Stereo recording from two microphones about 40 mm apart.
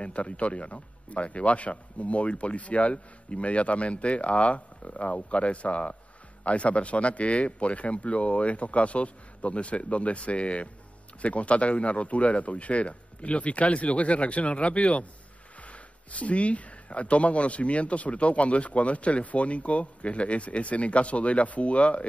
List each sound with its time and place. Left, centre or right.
0.0 s speech: left